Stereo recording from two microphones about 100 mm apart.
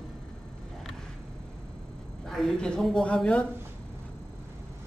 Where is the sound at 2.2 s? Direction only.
Centre (ahead or behind).